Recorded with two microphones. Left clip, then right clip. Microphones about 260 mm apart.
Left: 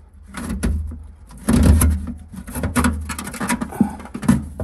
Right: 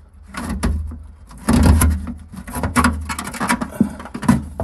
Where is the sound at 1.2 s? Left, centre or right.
Centre.